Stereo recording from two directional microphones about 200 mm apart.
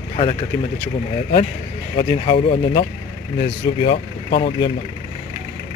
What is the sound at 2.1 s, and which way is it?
Speech, 25° left (ahead or behind).